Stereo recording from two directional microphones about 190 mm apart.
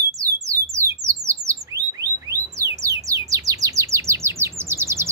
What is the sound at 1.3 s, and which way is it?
Bird, 15° right (ahead or behind).